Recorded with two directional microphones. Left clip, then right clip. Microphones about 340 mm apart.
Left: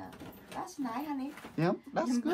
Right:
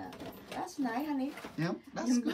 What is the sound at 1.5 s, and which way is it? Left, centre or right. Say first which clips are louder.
Speech: left 9 dB; centre.